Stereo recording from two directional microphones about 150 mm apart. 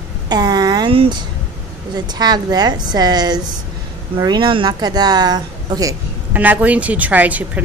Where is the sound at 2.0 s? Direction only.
25° right (ahead or behind).